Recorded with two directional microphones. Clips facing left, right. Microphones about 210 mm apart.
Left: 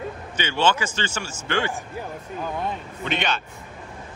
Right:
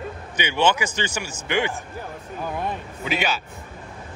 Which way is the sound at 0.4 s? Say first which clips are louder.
Right 1 dB; 15° right (ahead or behind).